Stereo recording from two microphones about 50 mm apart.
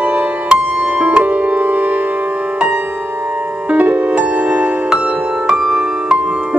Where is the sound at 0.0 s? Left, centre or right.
Right.